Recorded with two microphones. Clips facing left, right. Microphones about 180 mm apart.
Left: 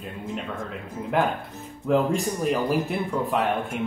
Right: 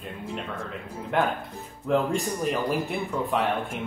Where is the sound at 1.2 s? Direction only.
Centre (ahead or behind).